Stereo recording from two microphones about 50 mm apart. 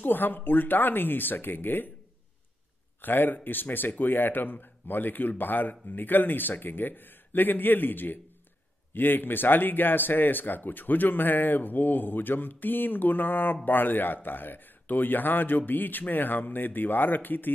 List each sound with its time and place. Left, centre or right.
0.0 s speech: left
3.0 s speech: left